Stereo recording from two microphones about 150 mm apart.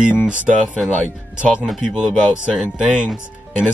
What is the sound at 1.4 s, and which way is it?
Speech, 10° right (ahead or behind).